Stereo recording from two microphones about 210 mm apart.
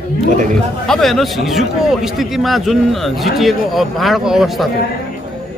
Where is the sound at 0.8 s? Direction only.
Centre (ahead or behind).